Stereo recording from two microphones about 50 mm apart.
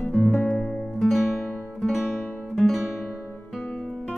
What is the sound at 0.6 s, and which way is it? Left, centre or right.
Music, centre.